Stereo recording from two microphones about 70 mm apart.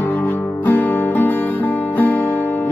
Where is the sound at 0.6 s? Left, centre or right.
Left.